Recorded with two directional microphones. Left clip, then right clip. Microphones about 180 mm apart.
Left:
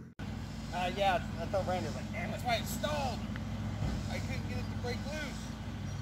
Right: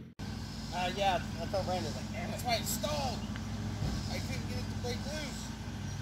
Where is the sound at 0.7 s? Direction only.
Centre (ahead or behind).